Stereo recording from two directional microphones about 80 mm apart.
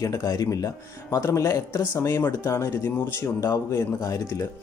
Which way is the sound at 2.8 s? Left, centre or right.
Left.